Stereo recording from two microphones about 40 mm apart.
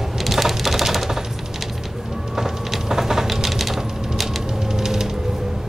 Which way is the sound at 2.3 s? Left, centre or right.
Centre.